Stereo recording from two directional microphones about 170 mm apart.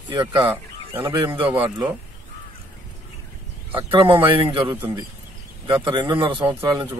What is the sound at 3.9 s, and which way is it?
Speech, 30° right (ahead or behind).